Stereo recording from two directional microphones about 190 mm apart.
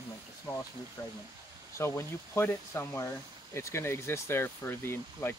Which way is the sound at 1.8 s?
15° left (ahead or behind).